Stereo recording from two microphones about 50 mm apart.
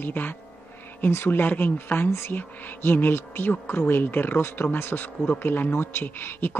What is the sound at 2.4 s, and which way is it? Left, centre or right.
Speech, left.